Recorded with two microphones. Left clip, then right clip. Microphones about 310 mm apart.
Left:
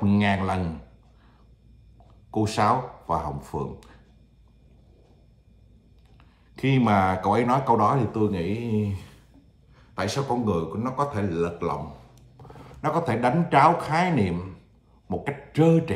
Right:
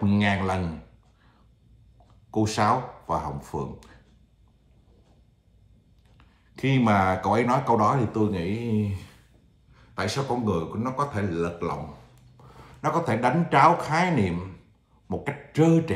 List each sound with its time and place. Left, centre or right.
0.0 s speech: centre
2.3 s speech: centre
6.1 s speech: centre
12.8 s a man's voice: centre
15.0 s a sound: centre